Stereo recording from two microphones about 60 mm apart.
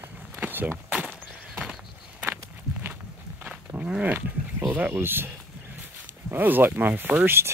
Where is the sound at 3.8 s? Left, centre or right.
Right.